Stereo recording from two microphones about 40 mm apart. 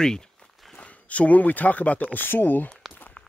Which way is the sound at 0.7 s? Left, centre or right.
Left.